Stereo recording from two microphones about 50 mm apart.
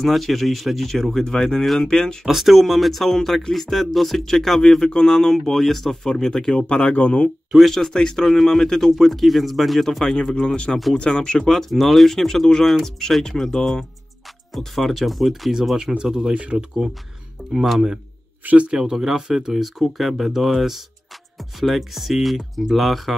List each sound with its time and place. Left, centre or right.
0.0 s speech: centre
2.2 s speech: centre
7.0 s speech: left
7.7 s speech: centre
10.1 s speech: centre
16.3 s speech: right
17.4 s a sound: centre
18.4 s speech: right
18.7 s speech: centre